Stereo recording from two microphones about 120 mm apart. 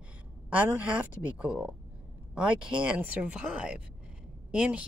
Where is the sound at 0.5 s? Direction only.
10° right (ahead or behind).